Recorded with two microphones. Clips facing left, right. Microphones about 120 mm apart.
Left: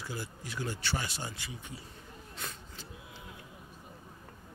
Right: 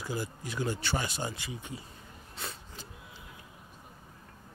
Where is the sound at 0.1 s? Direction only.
15° right (ahead or behind).